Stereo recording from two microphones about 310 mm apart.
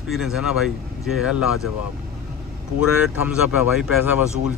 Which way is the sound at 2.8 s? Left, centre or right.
Centre.